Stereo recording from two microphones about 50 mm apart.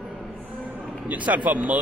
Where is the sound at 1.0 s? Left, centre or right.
Right.